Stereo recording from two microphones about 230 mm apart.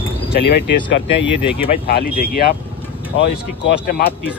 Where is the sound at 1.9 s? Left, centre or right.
Left.